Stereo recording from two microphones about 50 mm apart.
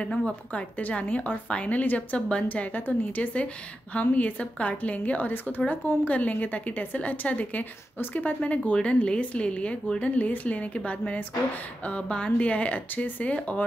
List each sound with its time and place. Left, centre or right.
0.0 s speech: left
2.4 s a woman's voice: left
5.7 s a woman's voice: left